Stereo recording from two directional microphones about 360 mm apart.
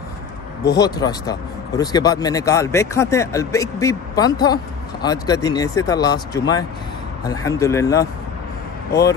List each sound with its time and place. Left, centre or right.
0.7 s speech: centre